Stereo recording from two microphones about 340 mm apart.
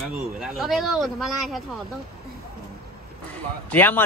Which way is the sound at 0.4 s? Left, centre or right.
Centre.